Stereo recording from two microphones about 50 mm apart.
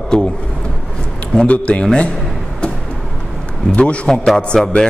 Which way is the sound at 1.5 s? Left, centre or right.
Left.